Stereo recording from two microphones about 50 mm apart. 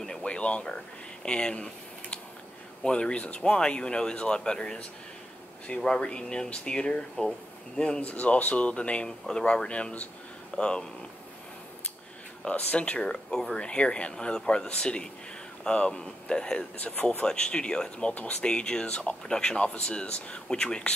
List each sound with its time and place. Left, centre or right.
0.0 s a sound: centre
2.8 s speech: centre
5.8 s speech: centre
8.0 s speech: left
12.4 s speech: left
16.7 s speech: left